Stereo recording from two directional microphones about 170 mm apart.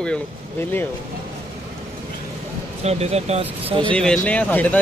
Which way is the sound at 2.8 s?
40° right (ahead or behind).